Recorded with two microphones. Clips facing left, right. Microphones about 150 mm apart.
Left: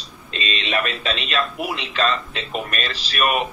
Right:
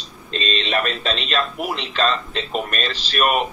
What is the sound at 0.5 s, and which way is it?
Speech, 35° right (ahead or behind).